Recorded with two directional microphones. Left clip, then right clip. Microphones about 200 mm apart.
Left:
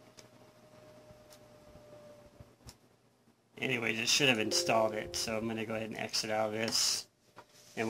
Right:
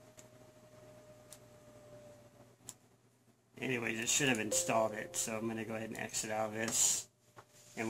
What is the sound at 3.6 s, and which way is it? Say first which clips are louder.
Speech: left 4 dB; 40° left (ahead or behind).